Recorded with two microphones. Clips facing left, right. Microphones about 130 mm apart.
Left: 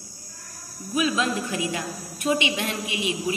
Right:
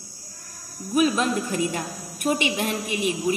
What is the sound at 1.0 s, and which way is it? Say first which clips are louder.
A woman's voice: right 3 dB; 50° right (ahead or behind).